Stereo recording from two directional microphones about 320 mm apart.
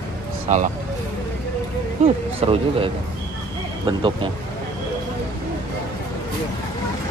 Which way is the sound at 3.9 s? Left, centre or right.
Centre.